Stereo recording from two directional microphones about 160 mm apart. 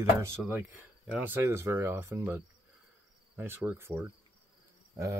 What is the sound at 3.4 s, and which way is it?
Speech, 15° right (ahead or behind).